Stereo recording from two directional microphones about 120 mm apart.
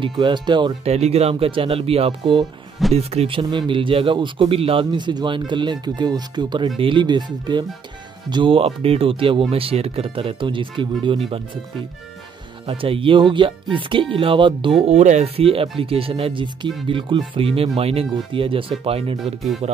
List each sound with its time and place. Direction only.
0.2 s speech: 40° right (ahead or behind)
0.8 s speech: 60° right (ahead or behind)
2.9 s speech: 60° right (ahead or behind)
12.6 s speech: 50° right (ahead or behind)
14.9 s speech: 70° right (ahead or behind); by 19.1 s 50° right (ahead or behind)